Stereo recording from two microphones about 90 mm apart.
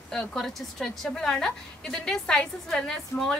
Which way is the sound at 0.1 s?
5° left (ahead or behind).